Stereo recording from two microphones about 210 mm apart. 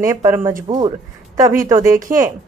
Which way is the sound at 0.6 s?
25° right (ahead or behind).